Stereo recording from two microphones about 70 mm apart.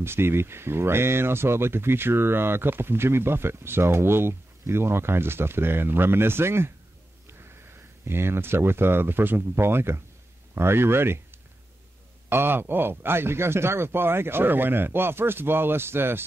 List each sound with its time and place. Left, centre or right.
0.0 s speech: right
8.0 s speech: right
12.3 s speech: right